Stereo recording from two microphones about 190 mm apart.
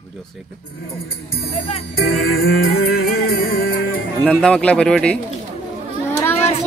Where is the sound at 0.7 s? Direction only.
55° left (ahead or behind).